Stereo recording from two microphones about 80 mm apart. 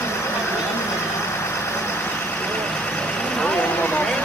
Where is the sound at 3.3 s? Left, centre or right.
Centre.